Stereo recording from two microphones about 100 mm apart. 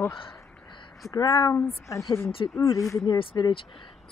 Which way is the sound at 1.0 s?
35° left (ahead or behind).